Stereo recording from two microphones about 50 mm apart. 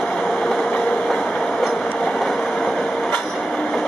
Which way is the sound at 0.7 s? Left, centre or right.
Centre.